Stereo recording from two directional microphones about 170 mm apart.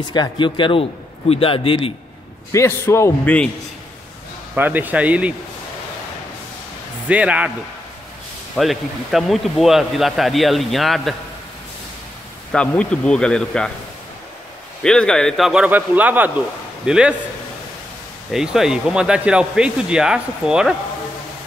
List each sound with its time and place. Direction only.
0.1 s a man's voice: 25° left (ahead or behind)
2.5 s a man's voice: 15° left (ahead or behind)
4.6 s speech: 10° right (ahead or behind)
7.1 s speech: 10° right (ahead or behind)
8.5 s speech: centre (ahead or behind)
12.5 s speech: 5° left (ahead or behind)
14.8 s speech: 5° left (ahead or behind)
18.3 s speech: centre (ahead or behind)